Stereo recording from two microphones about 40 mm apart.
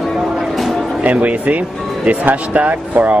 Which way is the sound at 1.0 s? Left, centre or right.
Right.